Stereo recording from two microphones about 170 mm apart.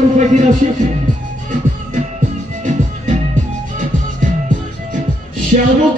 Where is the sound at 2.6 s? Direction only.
45° right (ahead or behind).